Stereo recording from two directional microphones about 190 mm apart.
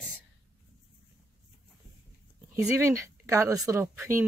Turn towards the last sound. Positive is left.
turn(degrees=-15)  # may be behind; listen again after turning